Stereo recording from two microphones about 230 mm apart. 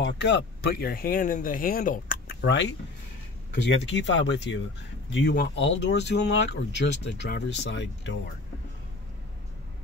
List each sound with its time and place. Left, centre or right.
0.0 s speech: left
2.4 s speech: left